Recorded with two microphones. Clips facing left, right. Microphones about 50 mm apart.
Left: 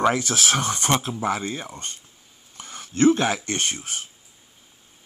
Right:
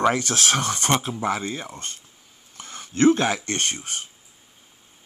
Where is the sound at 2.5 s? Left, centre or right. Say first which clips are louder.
Even; centre.